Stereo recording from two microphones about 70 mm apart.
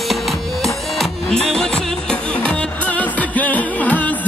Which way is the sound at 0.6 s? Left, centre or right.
Centre.